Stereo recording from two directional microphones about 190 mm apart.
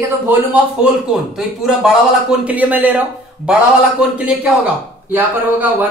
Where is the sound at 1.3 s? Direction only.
Centre (ahead or behind).